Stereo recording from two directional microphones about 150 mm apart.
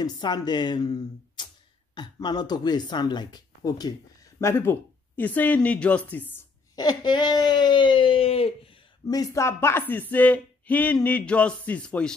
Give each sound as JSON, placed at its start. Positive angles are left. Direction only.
{"t": 0.0, "sound": "speech", "side_deg": 30}
{"t": 6.7, "sound": "speech", "side_deg": 25}
{"t": 9.0, "sound": "speech", "side_deg": 25}